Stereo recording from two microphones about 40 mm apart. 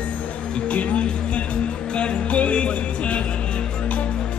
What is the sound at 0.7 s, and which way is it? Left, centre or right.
Music, left.